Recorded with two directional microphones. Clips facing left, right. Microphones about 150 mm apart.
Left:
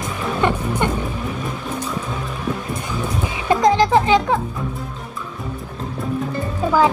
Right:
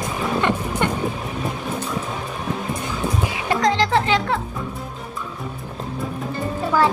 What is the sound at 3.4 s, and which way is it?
Music, 20° left (ahead or behind).